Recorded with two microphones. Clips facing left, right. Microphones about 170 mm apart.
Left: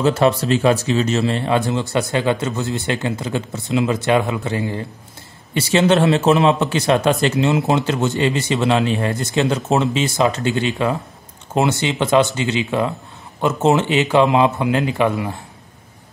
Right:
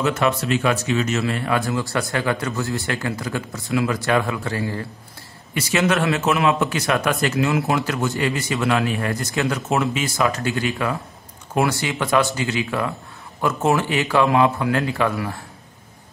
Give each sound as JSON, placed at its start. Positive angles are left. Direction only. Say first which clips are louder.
{"t": 0.0, "sound": "speech", "louder": "left 5 dB", "side_deg": 30}